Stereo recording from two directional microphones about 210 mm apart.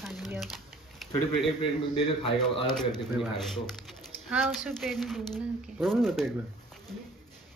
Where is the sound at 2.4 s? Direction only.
5° left (ahead or behind).